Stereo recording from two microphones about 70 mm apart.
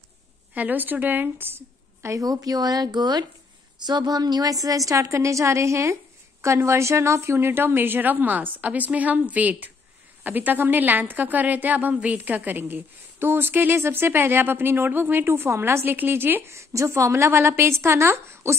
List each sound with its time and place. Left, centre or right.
0.6 s a woman's voice: right
2.2 s a woman's voice: right
16.5 s a woman's voice: right